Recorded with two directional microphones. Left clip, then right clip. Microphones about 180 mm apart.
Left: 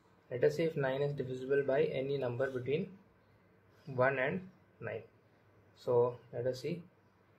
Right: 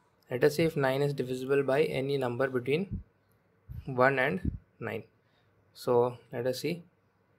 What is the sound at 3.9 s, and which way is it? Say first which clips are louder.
Speech: right 6 dB; 45° right (ahead or behind).